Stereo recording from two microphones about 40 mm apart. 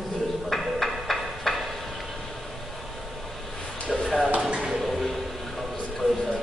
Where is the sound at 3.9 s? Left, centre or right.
Centre.